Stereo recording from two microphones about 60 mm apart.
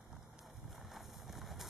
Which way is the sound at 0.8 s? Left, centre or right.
Centre.